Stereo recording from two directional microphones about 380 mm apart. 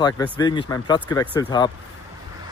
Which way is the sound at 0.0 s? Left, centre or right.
Centre.